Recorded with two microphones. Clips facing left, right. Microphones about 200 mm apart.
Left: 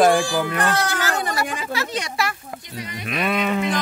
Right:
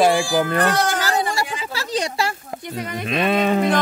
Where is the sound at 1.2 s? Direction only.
50° left (ahead or behind).